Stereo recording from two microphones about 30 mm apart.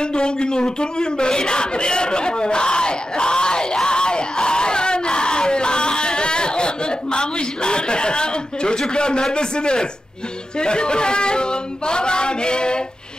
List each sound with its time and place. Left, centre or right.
0.0 s a man's voice: left